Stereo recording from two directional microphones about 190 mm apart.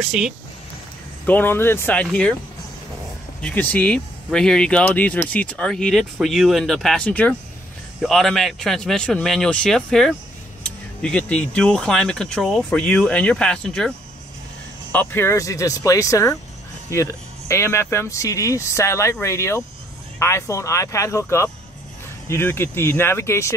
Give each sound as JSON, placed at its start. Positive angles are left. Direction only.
{"t": 0.0, "sound": "speech", "side_deg": 0}
{"t": 1.2, "sound": "speech", "side_deg": 10}
{"t": 3.3, "sound": "speech", "side_deg": 5}